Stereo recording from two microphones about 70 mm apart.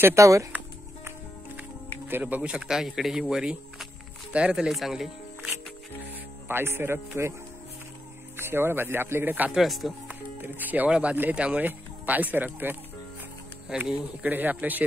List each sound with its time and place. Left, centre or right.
0.1 s speech: right
2.0 s speech: right
2.6 s speech: centre
6.0 s speech: right
8.4 s speech: right
9.5 s speech: centre
10.0 s speech: right
13.7 s speech: centre
14.2 s speech: right